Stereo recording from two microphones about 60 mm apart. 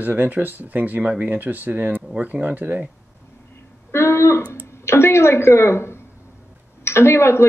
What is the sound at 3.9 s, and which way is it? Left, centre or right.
A woman's voice, left.